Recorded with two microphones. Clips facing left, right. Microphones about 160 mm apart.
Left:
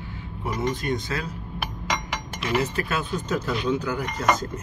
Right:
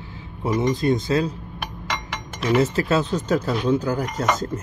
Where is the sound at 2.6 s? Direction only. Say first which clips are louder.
Right 7 dB; 35° right (ahead or behind).